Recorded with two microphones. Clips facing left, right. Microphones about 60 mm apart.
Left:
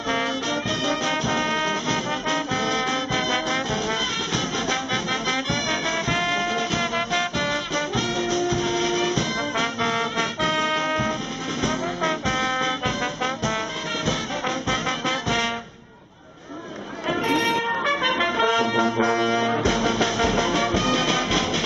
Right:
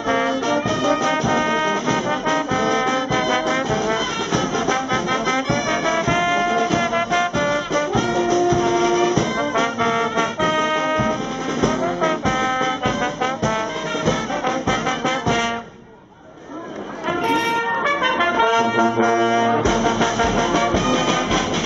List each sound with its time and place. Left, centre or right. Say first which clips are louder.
0.5 s brass instrument: right 6 dB; right
8.3 s music: right 7 dB; right; by 11.1 s centre
11.6 s brass instrument: right 5 dB; centre
14.7 s music: right 3 dB; centre
17.8 s brass instrument: right 5 dB; centre